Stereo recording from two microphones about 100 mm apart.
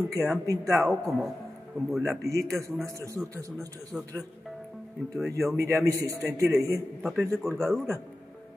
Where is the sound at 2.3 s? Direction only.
30° right (ahead or behind).